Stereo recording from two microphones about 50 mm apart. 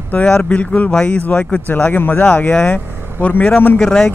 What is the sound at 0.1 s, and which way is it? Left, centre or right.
Speech, left.